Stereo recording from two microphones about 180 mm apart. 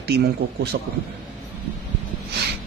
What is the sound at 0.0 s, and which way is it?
Speech, 65° right (ahead or behind).